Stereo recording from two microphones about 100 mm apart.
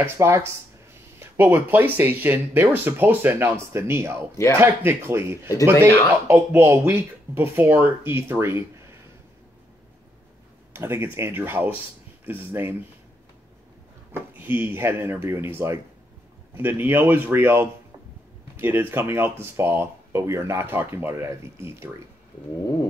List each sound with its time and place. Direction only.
0.0 s speech: 25° right (ahead or behind)
10.7 s speech: 25° right (ahead or behind)
14.4 s speech: 20° right (ahead or behind)